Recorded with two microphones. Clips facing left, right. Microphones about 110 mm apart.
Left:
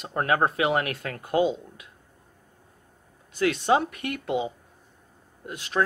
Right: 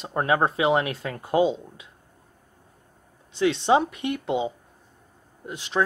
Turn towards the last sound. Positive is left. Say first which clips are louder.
# right 1 dB
turn(degrees=-25)  # may be behind; listen again after turning